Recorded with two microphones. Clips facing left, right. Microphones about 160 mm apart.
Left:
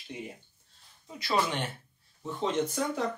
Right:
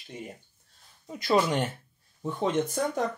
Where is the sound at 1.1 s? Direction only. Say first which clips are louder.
Right 5 dB; 45° right (ahead or behind).